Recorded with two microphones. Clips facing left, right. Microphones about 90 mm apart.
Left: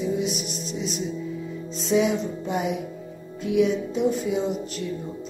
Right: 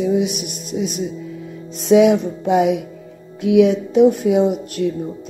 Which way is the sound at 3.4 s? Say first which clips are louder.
Right 8 dB; 70° right (ahead or behind).